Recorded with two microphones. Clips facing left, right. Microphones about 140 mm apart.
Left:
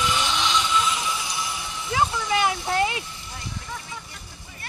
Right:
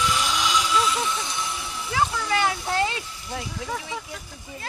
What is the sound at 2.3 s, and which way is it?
Vehicle, 20° left (ahead or behind).